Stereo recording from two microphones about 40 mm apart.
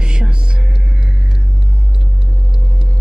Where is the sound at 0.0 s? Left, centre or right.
Right.